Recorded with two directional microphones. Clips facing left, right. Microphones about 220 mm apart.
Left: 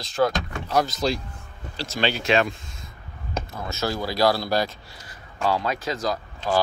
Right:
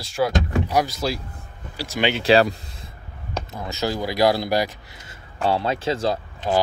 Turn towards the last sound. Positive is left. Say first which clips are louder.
# right 2 dB
turn(degrees=-25)  # may be behind; listen again after turning